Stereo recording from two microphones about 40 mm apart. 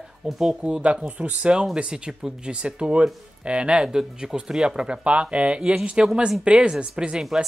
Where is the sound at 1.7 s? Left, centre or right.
Right.